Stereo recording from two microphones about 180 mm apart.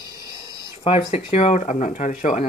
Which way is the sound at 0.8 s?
35° left (ahead or behind).